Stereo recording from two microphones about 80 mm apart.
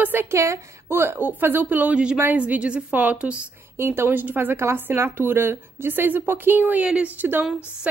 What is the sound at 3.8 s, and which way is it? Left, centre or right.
Speech, right.